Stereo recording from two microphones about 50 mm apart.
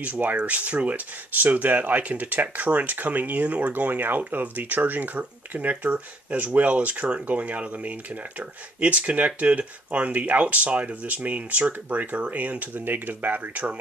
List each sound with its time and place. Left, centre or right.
0.0 s speech: right